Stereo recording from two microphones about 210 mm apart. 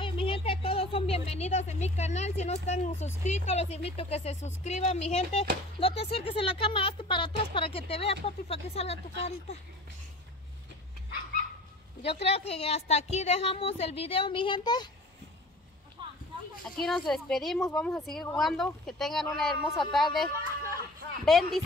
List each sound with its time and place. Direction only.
0.0 s a sound: 25° left (ahead or behind)
3.3 s speech: 30° left (ahead or behind)
12.1 s speech: 30° left (ahead or behind)
16.0 s a sound: 20° right (ahead or behind)
16.6 s speech: centre (ahead or behind)
21.3 s speech: centre (ahead or behind)